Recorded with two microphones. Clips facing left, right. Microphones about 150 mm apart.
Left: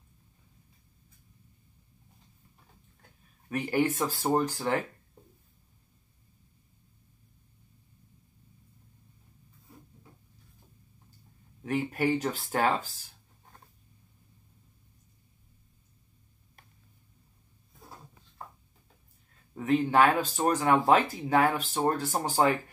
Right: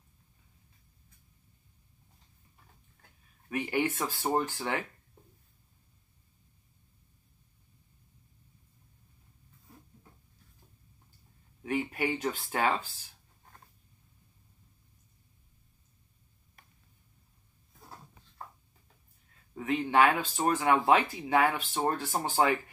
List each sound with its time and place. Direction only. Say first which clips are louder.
3.4 s speech: left 3 dB; 40° left (ahead or behind)
11.6 s speech: left 3 dB; 40° left (ahead or behind)
19.6 s speech: left 2 dB; 40° left (ahead or behind)